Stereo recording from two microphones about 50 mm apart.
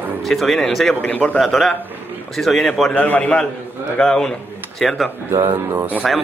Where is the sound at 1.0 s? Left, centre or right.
Left.